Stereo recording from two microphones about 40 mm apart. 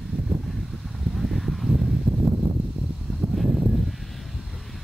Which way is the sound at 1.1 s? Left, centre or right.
Centre.